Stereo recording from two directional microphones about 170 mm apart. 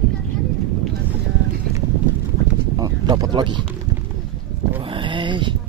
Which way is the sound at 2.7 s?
25° right (ahead or behind).